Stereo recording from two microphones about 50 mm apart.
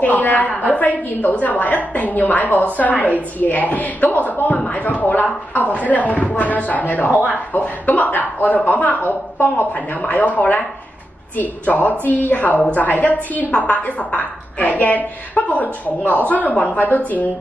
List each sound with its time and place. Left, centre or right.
0.0 s a woman's voice: left
7.1 s speech: right
7.3 s a woman's voice: left